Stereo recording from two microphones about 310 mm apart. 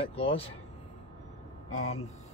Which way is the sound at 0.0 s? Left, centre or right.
Centre.